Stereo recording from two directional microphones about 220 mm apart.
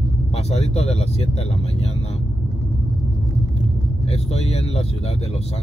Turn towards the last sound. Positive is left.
turn(degrees=30)  # may be behind; listen again after turning